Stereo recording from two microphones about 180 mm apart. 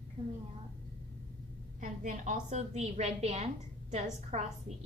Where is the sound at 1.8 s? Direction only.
45° right (ahead or behind).